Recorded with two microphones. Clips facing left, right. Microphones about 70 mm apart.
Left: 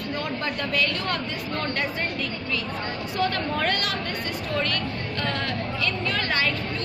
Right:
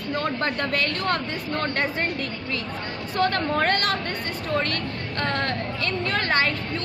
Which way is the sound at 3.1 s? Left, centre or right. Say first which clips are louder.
Right 4 dB; right.